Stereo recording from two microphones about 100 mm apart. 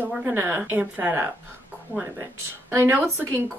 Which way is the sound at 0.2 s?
20° right (ahead or behind).